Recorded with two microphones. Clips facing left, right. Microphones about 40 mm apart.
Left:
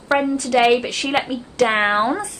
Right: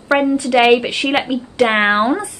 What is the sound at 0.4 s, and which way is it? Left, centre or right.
A woman's voice, right.